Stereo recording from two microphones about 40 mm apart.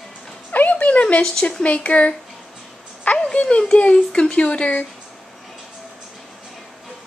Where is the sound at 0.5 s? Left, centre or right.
Left.